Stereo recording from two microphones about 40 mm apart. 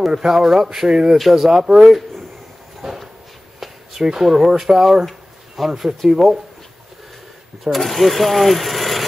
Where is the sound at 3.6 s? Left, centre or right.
Centre.